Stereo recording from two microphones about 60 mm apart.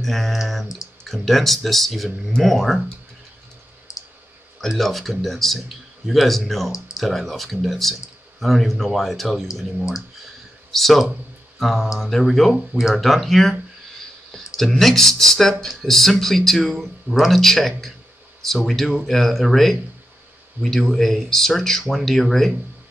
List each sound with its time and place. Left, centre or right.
0.0 s speech: centre
3.9 s clicking: left
4.6 s speech: centre
10.7 s speech: centre